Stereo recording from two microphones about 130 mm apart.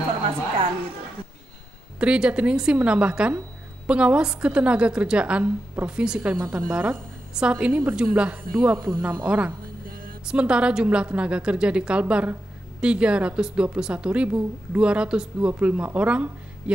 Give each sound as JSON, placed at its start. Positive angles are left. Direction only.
{"t": 2.0, "sound": "a woman's voice", "side_deg": -10}
{"t": 6.3, "sound": "a woman's voice", "side_deg": -15}
{"t": 9.8, "sound": "a sound", "side_deg": -90}
{"t": 10.2, "sound": "a woman's voice", "side_deg": -10}